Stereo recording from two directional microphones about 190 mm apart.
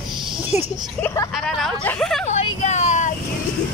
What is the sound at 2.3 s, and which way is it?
Vehicle, 35° left (ahead or behind).